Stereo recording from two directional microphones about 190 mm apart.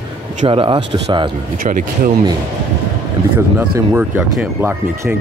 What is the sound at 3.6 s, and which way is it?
Speech, 10° right (ahead or behind).